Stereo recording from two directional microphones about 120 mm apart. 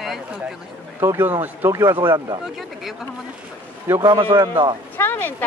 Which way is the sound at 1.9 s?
35° right (ahead or behind).